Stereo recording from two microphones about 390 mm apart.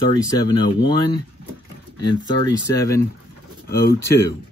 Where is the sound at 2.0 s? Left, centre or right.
Centre.